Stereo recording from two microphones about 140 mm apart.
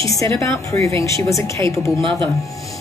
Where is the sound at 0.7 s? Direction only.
20° left (ahead or behind).